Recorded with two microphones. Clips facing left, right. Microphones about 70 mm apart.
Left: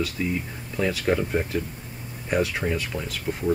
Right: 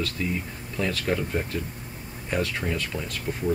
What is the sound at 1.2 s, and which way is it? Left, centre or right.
Speech, left.